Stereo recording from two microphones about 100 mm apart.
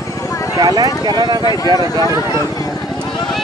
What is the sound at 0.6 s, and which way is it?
Speech, 40° right (ahead or behind).